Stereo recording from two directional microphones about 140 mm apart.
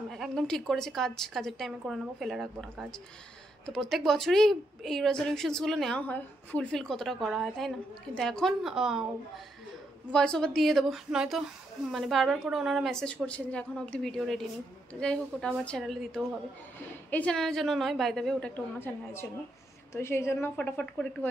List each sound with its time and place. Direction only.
0.1 s a woman's voice: centre (ahead or behind)
10.1 s a woman's voice: 5° left (ahead or behind)
18.8 s a woman's voice: 15° left (ahead or behind)